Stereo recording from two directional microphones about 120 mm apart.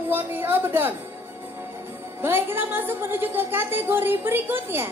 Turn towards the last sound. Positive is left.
turn(degrees=-15)  # may be behind; listen again after turning